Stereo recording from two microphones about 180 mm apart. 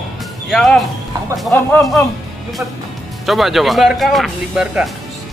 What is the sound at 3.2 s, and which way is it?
Speech, centre (ahead or behind).